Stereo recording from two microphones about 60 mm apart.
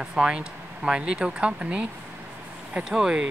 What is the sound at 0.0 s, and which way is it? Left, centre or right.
Speech, centre.